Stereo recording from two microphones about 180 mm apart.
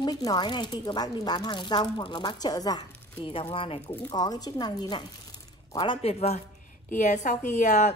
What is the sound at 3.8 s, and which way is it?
A woman's voice, 15° left (ahead or behind).